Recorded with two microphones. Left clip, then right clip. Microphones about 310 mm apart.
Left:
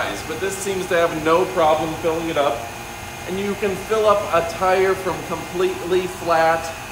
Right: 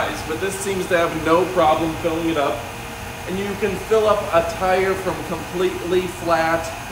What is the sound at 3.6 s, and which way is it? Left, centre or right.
Speech, centre.